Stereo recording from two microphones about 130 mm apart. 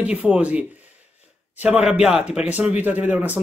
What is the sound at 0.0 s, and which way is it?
Speech, 10° right (ahead or behind).